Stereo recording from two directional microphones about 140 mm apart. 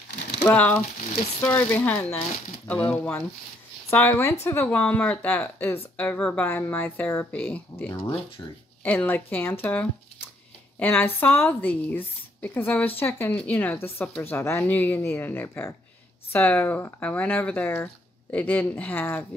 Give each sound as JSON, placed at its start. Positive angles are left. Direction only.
{"t": 0.4, "sound": "speech", "side_deg": 10}